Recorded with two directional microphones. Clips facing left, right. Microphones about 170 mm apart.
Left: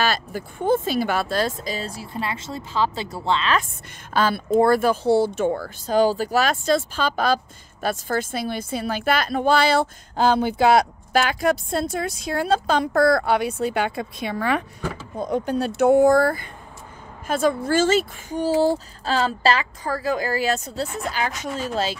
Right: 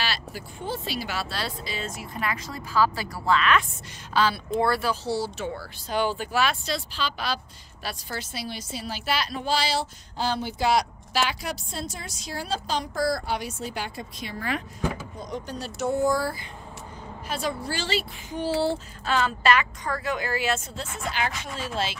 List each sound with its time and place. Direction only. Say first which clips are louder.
0.0 s speech: left 8 dB; 50° left (ahead or behind); by 3.6 s 30° left (ahead or behind)
4.1 s a woman's voice: left 4 dB; 50° left (ahead or behind)